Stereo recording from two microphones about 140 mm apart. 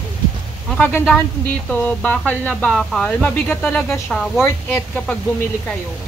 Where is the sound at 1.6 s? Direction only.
10° left (ahead or behind).